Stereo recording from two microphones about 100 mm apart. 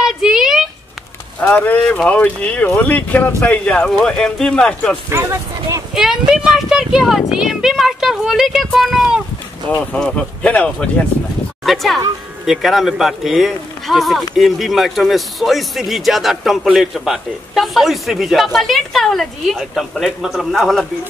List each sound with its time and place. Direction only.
0.0 s a sound: 5° right (ahead or behind)
1.5 s speech: 15° left (ahead or behind)
5.1 s speech: 25° right (ahead or behind)
5.9 s speech: 5° right (ahead or behind)
9.9 s speech: 10° left (ahead or behind)
11.6 s speech: centre (ahead or behind)